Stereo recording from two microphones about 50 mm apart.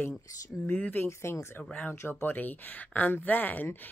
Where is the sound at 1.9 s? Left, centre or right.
Left.